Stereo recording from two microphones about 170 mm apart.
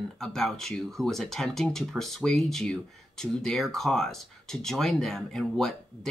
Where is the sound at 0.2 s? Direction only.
Centre (ahead or behind).